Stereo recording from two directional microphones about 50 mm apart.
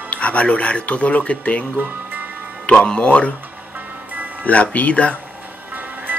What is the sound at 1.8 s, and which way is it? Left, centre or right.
Music, right.